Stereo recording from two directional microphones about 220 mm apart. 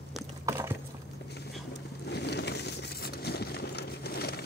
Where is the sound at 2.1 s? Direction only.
50° left (ahead or behind).